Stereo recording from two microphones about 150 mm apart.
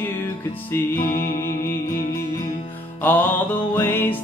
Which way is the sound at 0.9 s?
65° left (ahead or behind).